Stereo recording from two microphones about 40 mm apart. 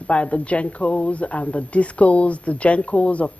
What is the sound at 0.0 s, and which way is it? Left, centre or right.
Speech, left.